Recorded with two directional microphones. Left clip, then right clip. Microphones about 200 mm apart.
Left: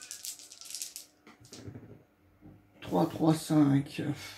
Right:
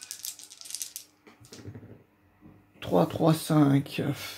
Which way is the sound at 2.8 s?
50° right (ahead or behind).